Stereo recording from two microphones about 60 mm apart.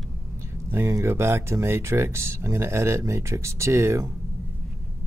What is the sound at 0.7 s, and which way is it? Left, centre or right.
Speech, right.